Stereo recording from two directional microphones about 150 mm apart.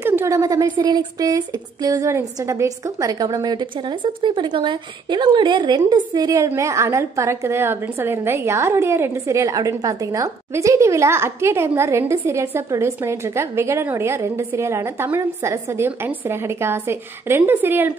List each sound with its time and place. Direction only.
0.0 s speech: 15° right (ahead or behind)